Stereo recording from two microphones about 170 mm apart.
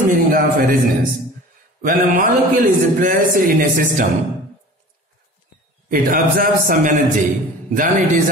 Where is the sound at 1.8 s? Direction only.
50° right (ahead or behind).